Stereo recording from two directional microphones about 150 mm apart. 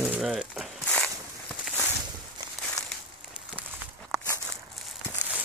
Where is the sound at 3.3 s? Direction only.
5° right (ahead or behind).